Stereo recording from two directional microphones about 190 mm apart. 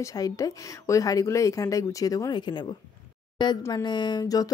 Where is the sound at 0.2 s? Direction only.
15° left (ahead or behind).